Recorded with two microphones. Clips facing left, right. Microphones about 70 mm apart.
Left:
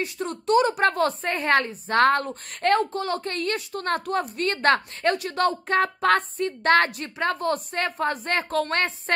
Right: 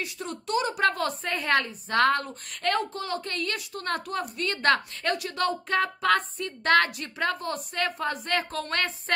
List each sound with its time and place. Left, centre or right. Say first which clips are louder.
0.0 s a woman's voice: left 6 dB; left
7.3 s a woman's voice: left 5 dB; left